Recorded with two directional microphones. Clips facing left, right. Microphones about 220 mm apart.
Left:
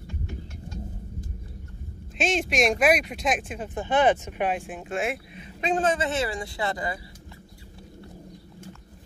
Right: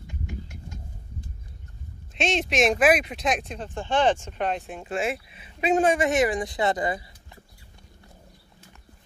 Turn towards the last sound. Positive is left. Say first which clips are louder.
# right 4 dB
turn(degrees=-20)  # may be behind; listen again after turning